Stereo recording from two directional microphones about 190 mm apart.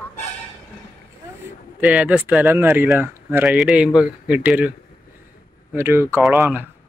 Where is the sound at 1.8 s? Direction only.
5° right (ahead or behind).